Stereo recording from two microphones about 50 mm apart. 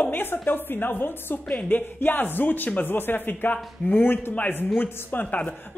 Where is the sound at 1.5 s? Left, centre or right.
Left.